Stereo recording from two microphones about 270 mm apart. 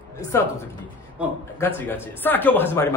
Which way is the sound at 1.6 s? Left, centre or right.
Centre.